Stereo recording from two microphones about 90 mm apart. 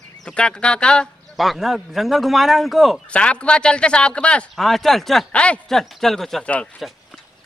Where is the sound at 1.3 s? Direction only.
Centre (ahead or behind).